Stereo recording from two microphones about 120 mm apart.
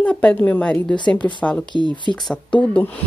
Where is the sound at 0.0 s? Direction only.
10° left (ahead or behind).